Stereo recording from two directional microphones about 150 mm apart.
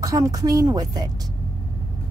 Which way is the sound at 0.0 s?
25° right (ahead or behind).